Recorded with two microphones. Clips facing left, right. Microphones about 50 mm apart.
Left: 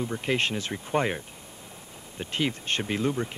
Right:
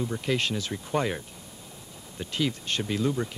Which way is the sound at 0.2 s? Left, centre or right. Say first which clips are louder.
Left 1 dB; left.